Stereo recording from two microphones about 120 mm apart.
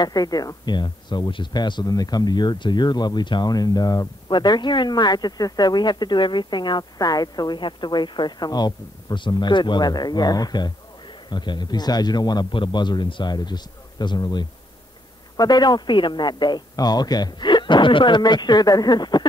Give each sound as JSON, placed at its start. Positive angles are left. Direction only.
{"t": 0.0, "sound": "speech", "side_deg": 30}